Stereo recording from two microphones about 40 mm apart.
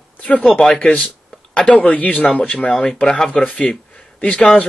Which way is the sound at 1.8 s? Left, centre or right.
Left.